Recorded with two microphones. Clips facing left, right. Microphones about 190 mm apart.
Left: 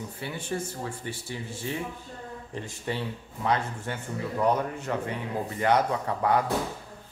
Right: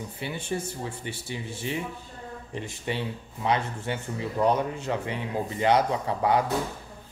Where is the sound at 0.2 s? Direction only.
20° right (ahead or behind).